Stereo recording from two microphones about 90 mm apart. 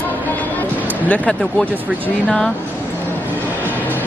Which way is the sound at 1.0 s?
15° left (ahead or behind).